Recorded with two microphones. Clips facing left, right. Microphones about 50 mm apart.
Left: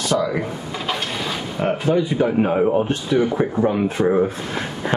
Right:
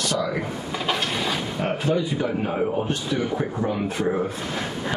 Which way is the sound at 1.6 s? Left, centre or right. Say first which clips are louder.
Left 6 dB; left.